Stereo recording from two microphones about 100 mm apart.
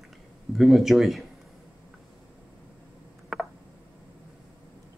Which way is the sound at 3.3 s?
Centre (ahead or behind).